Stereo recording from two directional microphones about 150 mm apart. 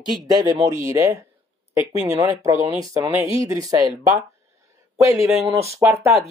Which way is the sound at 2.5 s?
20° right (ahead or behind).